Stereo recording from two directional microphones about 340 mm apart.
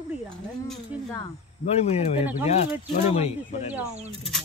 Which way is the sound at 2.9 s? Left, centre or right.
Centre.